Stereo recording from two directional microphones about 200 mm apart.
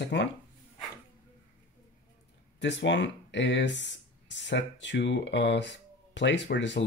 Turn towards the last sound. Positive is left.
turn(degrees=60)  # may be behind; listen again after turning